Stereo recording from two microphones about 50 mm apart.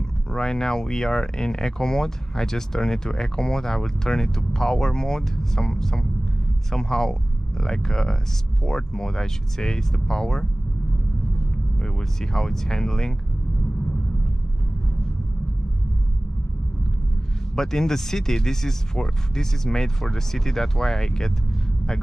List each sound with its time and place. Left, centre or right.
0.3 s speech: centre
11.8 s speech: centre
17.6 s speech: centre